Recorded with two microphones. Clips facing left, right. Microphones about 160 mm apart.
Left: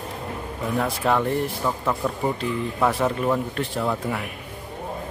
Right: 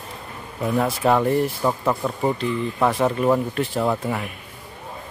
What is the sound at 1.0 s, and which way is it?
Speech, 15° right (ahead or behind).